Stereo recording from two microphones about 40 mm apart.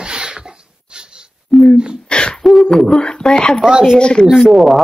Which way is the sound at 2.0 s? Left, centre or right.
Left.